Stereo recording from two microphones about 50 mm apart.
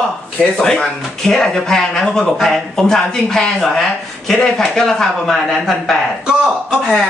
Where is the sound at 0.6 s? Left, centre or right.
Centre.